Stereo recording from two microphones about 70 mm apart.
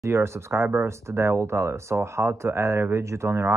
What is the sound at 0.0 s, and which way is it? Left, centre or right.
Speech, right.